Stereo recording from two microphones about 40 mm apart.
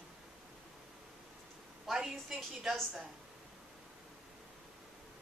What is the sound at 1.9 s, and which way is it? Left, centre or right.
Speech, centre.